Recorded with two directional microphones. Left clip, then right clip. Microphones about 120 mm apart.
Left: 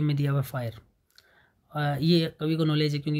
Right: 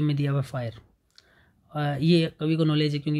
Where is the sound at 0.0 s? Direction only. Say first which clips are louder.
Right 2 dB; 25° right (ahead or behind).